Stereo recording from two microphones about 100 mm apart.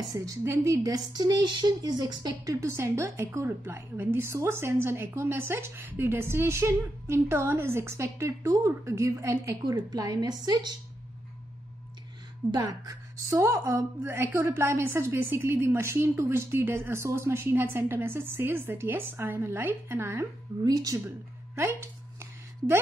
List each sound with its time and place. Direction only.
0.1 s a woman's voice: 35° right (ahead or behind)
2.5 s a woman's voice: 30° right (ahead or behind)
9.8 s a woman's voice: 40° right (ahead or behind)
13.3 s a woman's voice: 30° right (ahead or behind)
20.6 s a woman's voice: 40° right (ahead or behind)
21.5 s a sound: 25° right (ahead or behind)